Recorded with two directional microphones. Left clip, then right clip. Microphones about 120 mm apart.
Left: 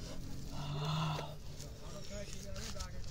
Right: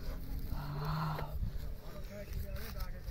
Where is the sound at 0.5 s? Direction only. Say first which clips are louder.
Even; 25° right (ahead or behind).